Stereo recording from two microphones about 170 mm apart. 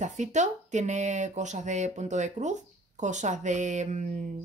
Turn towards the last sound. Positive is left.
turn(degrees=-45)  # may be behind; listen again after turning